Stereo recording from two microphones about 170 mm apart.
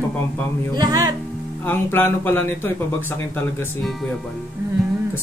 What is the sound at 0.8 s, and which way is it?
Music, 20° right (ahead or behind).